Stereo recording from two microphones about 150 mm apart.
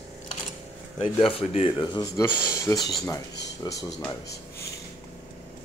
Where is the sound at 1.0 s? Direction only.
40° left (ahead or behind).